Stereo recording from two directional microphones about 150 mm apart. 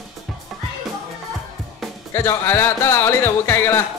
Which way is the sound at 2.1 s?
15° left (ahead or behind).